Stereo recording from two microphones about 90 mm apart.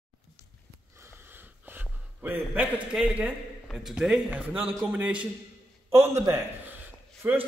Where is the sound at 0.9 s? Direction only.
30° right (ahead or behind).